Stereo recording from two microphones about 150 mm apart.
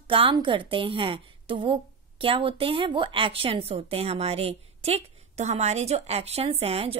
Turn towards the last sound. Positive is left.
turn(degrees=-40)  # may be behind; listen again after turning